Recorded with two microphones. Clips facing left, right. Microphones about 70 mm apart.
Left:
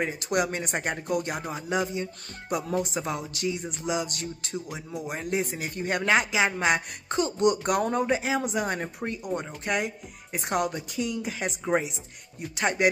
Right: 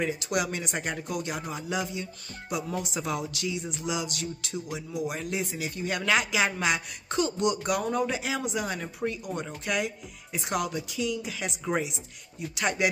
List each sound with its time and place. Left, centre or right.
0.0 s speech: left